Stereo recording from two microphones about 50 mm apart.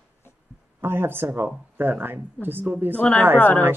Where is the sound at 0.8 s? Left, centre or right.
Right.